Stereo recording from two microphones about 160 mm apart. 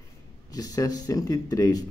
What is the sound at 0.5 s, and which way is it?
Speech, 25° left (ahead or behind).